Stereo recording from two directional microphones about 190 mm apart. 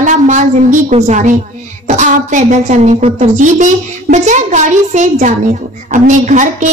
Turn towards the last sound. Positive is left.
turn(degrees=-40)  # may be behind; listen again after turning